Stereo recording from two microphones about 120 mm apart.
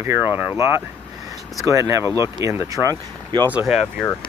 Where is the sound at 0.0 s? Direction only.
20° right (ahead or behind).